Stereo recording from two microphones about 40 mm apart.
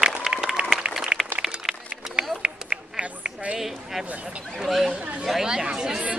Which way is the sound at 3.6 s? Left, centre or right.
Centre.